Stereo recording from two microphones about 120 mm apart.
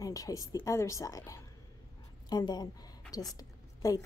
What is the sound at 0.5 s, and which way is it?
A woman's voice, 25° left (ahead or behind).